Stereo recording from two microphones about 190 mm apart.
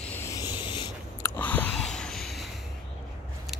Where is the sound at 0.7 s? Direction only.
20° left (ahead or behind).